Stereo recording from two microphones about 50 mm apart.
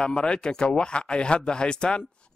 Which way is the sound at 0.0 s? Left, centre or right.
Centre.